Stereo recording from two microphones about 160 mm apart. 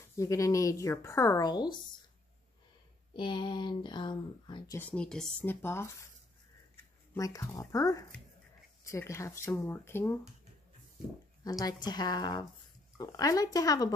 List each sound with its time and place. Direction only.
0.2 s speech: 20° left (ahead or behind)
3.1 s speech: 30° left (ahead or behind)
4.7 s speech: 10° left (ahead or behind)
7.2 s speech: 20° left (ahead or behind)
11.4 s speech: 25° left (ahead or behind)